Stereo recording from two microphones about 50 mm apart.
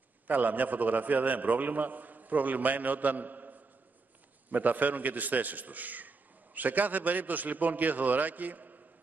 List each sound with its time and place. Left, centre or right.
0.3 s a man's voice: right